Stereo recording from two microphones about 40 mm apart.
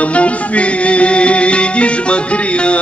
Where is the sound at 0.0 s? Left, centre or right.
Left.